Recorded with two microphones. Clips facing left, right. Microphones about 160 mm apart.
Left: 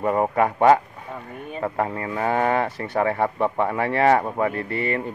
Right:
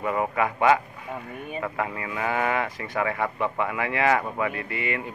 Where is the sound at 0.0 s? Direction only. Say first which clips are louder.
Left 5 dB; 40° left (ahead or behind).